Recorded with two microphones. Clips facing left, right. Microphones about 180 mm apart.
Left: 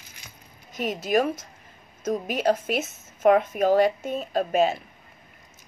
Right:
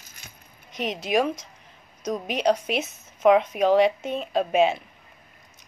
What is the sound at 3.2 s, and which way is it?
Speech, 50° left (ahead or behind).